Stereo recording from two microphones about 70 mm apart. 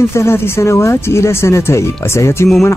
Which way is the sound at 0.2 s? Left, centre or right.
Left.